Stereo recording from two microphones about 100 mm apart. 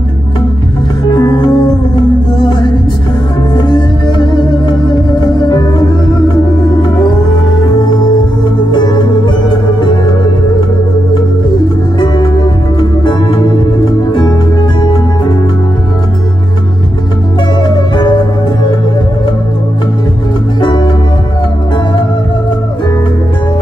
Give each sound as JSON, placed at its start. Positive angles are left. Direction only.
{"t": 1.0, "sound": "music", "side_deg": 45}
{"t": 3.5, "sound": "music", "side_deg": 50}
{"t": 5.4, "sound": "music", "side_deg": 45}
{"t": 8.7, "sound": "music", "side_deg": 45}
{"t": 12.7, "sound": "music", "side_deg": 55}
{"t": 17.6, "sound": "music", "side_deg": 50}
{"t": 20.6, "sound": "music", "side_deg": 50}